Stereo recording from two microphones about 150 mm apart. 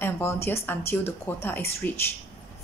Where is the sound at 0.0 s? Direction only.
15° left (ahead or behind).